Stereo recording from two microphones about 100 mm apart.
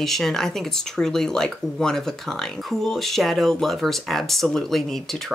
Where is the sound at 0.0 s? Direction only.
5° left (ahead or behind).